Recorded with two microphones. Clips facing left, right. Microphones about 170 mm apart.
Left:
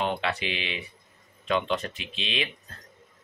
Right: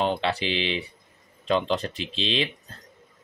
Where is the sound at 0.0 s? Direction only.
30° right (ahead or behind).